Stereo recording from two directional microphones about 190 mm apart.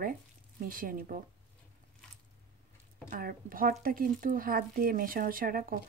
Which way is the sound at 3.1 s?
50° right (ahead or behind).